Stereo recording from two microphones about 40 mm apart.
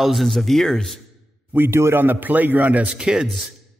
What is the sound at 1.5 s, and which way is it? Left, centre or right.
A man's voice, right.